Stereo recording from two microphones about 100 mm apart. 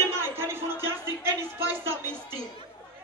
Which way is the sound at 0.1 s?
25° right (ahead or behind).